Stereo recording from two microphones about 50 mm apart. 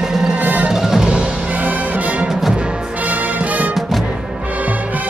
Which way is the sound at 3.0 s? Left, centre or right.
Right.